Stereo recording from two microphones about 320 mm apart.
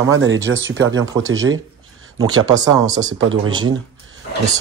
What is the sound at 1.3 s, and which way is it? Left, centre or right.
Speech, right.